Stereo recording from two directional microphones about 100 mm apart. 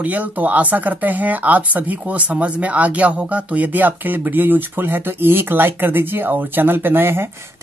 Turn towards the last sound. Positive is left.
turn(degrees=-20)  # may be behind; listen again after turning